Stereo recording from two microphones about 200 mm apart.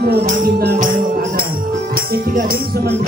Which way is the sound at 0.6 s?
50° right (ahead or behind).